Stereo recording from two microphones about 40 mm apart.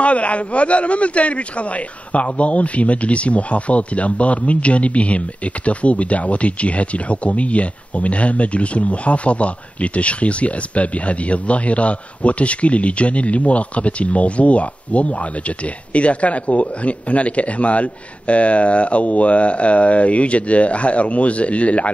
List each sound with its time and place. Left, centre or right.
0.0 s speech: left